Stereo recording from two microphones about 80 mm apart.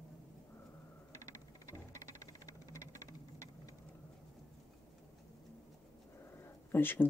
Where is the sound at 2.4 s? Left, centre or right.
Left.